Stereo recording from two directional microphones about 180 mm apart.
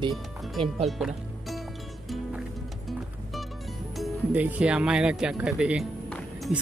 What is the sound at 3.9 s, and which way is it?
Speech, 5° right (ahead or behind).